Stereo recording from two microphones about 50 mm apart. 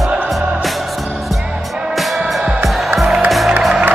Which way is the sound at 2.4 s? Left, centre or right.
Centre.